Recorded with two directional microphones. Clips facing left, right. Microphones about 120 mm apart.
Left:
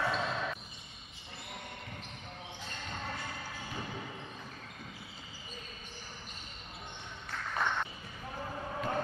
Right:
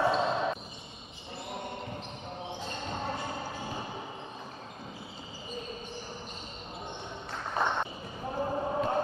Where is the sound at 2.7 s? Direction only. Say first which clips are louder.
Right 5 dB; 25° right (ahead or behind).